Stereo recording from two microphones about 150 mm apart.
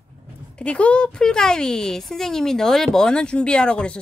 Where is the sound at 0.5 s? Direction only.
10° left (ahead or behind).